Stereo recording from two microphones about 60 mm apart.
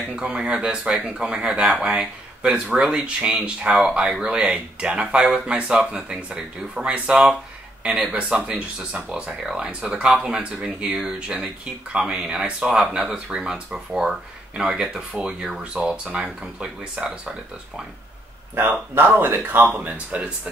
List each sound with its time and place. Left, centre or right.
0.1 s speech: centre
18.5 s speech: right